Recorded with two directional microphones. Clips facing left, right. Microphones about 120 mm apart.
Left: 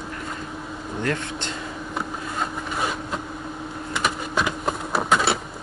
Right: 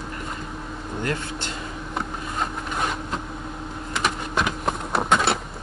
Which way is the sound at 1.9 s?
Centre (ahead or behind).